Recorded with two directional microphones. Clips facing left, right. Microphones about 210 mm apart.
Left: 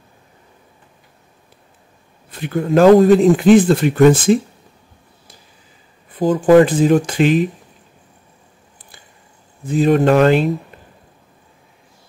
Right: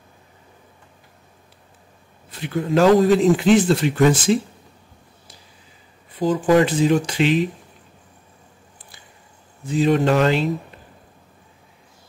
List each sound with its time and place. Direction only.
2.3 s speech: 50° left (ahead or behind)
6.1 s speech: 50° left (ahead or behind)
9.7 s speech: 50° left (ahead or behind)